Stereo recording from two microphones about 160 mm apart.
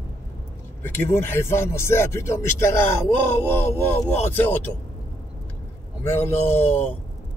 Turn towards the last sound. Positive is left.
turn(degrees=15)  # may be behind; listen again after turning